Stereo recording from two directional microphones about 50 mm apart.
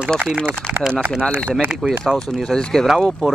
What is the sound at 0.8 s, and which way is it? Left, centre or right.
Speech, centre.